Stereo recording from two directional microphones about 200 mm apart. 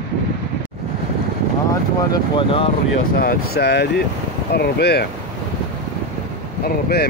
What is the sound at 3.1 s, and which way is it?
Speech, 50° left (ahead or behind).